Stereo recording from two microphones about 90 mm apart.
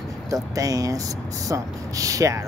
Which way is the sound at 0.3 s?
40° right (ahead or behind).